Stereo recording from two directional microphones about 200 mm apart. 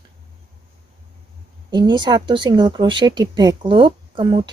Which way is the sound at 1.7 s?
20° right (ahead or behind).